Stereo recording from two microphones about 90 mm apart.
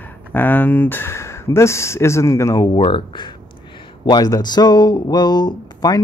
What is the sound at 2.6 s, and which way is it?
Speech, 70° left (ahead or behind).